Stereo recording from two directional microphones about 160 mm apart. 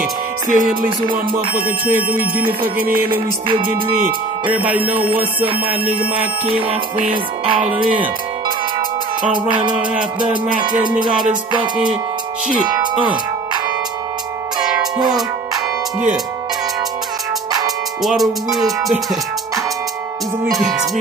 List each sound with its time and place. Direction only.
0.0 s music: 55° right (ahead or behind)
2.0 s music: 10° right (ahead or behind)
2.4 s music: 60° right (ahead or behind)
3.4 s music: 35° right (ahead or behind)
4.5 s music: 10° right (ahead or behind)
9.3 s music: 30° right (ahead or behind)
12.8 s speech: 30° right (ahead or behind)
14.6 s music: 5° right (ahead or behind)
18.0 s music: centre (ahead or behind)
20.5 s music: centre (ahead or behind)